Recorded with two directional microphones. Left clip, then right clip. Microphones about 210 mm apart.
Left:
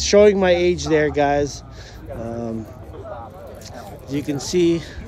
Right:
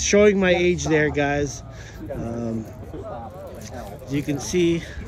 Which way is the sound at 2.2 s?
5° left (ahead or behind).